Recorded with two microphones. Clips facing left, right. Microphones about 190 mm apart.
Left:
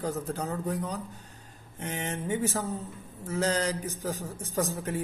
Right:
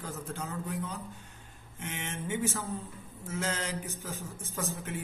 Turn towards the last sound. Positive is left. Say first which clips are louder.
# left 6 dB
turn(degrees=35)  # may be behind; listen again after turning